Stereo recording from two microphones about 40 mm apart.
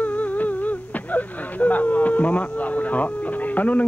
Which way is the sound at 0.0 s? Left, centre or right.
Left.